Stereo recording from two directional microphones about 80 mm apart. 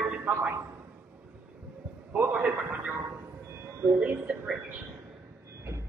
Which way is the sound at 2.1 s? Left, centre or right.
Centre.